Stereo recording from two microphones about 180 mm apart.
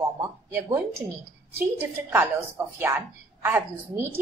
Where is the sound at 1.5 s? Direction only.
10° right (ahead or behind).